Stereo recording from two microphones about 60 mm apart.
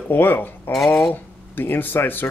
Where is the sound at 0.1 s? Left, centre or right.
Left.